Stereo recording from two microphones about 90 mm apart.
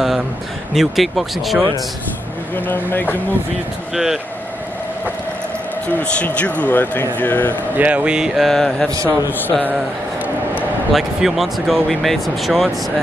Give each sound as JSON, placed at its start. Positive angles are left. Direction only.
{"t": 0.7, "sound": "speech", "side_deg": 0}
{"t": 2.5, "sound": "speech", "side_deg": 20}
{"t": 3.9, "sound": "speech", "side_deg": -5}
{"t": 5.9, "sound": "speech", "side_deg": 15}
{"t": 7.7, "sound": "speech", "side_deg": -15}
{"t": 8.9, "sound": "a man's voice", "side_deg": -40}
{"t": 10.9, "sound": "speech", "side_deg": -5}